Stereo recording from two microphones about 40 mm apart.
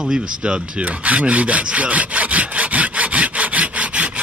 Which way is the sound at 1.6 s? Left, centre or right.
Right.